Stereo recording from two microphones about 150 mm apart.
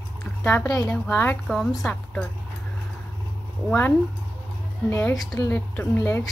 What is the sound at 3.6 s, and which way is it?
Speech, 10° left (ahead or behind).